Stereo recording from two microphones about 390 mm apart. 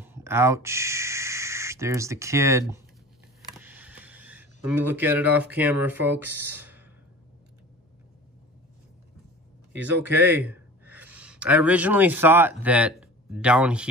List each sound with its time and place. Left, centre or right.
0.0 s speech: centre
3.6 s speech: centre
9.8 s speech: centre